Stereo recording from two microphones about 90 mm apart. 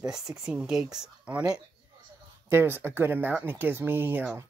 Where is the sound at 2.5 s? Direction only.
25° right (ahead or behind).